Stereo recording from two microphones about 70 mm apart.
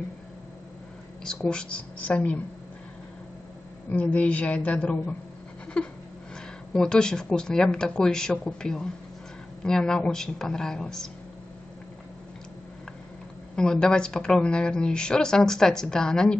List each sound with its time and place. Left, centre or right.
1.2 s a woman's voice: centre
3.9 s a woman's voice: centre
13.6 s a woman's voice: centre